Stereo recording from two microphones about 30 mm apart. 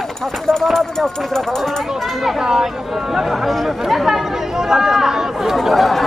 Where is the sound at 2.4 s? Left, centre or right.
Centre.